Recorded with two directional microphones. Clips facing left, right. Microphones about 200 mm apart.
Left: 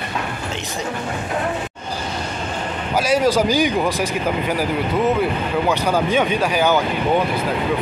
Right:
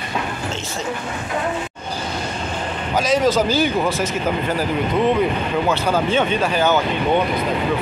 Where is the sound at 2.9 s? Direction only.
10° left (ahead or behind).